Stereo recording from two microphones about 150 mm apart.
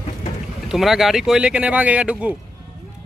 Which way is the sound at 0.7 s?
Centre (ahead or behind).